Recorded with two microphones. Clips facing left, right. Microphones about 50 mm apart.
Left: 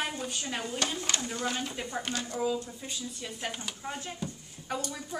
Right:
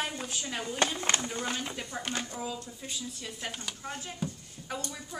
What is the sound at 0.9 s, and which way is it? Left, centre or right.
Speech, right.